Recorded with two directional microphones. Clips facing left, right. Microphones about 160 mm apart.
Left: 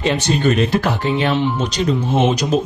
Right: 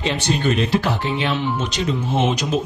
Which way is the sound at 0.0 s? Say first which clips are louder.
Left 4 dB; 50° left (ahead or behind).